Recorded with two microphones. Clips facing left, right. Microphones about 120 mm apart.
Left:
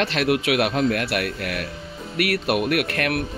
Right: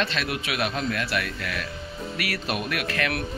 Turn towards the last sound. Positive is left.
turn(degrees=55)  # may be behind; listen again after turning